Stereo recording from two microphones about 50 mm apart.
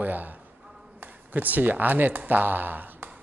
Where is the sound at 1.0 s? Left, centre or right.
Right.